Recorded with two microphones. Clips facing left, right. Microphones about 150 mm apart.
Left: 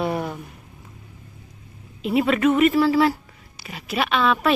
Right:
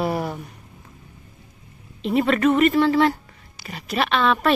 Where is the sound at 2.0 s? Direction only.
5° left (ahead or behind).